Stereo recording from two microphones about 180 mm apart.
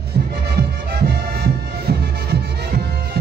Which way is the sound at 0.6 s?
60° right (ahead or behind).